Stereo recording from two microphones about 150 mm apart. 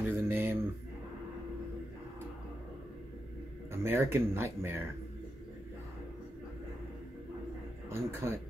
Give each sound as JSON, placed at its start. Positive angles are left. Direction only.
{"t": 0.0, "sound": "a sound", "side_deg": -15}
{"t": 3.7, "sound": "speech", "side_deg": -15}
{"t": 7.9, "sound": "speech", "side_deg": -20}